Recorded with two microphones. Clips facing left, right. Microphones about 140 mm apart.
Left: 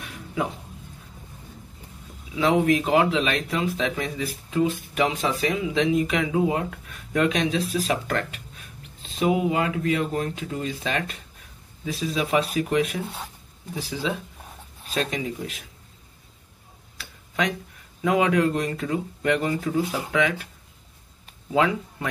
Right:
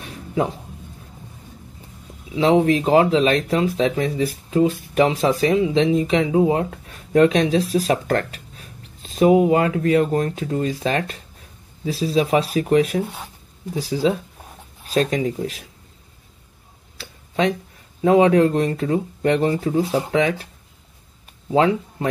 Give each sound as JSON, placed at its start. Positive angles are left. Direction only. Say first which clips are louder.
{"t": 0.0, "sound": "music", "louder": "right 6 dB", "side_deg": -35}
{"t": 2.3, "sound": "speech", "louder": "right 4 dB", "side_deg": -30}
{"t": 17.0, "sound": "a sound", "louder": "right 6 dB", "side_deg": -30}
{"t": 18.0, "sound": "speech", "louder": "right 7 dB", "side_deg": -30}
{"t": 21.5, "sound": "speech", "louder": "right 5 dB", "side_deg": -30}